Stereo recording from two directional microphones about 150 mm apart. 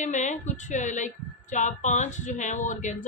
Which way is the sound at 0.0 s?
55° left (ahead or behind).